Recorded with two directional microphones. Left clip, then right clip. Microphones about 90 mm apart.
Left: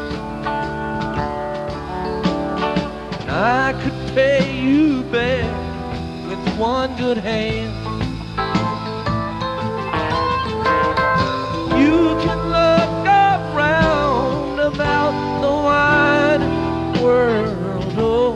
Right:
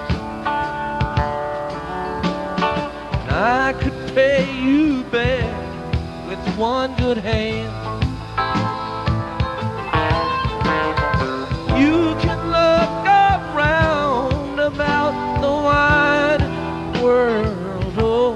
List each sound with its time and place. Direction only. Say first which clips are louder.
2.2 s music: even; 45° left (ahead or behind)
3.3 s music: even; 55° left (ahead or behind); by 5.0 s 30° left (ahead or behind)
5.1 s music: left 1 dB; 40° left (ahead or behind)
6.4 s music: left 1 dB; 55° left (ahead or behind); by 8.7 s 40° left (ahead or behind)
9.9 s music: right 1 dB; 45° left (ahead or behind); by 14.3 s 25° left (ahead or behind)
14.6 s music: even; 50° left (ahead or behind)
17.9 s music: even; 50° left (ahead or behind)